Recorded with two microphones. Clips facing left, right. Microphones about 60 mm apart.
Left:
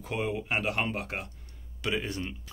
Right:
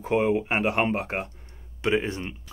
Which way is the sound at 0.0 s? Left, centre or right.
Right.